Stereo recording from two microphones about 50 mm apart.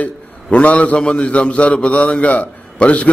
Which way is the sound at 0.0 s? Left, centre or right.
Left.